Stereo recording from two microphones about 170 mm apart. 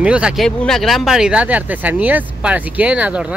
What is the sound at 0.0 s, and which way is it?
Speech, 5° right (ahead or behind).